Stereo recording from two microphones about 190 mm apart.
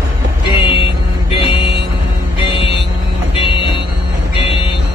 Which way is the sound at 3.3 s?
25° left (ahead or behind).